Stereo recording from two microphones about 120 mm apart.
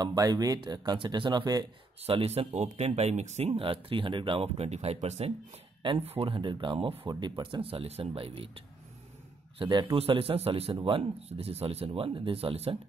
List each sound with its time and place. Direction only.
0.0 s speech: 35° right (ahead or behind)
2.0 s a man's voice: 55° right (ahead or behind); by 7.6 s 40° right (ahead or behind)
7.6 s a man's voice: 55° right (ahead or behind)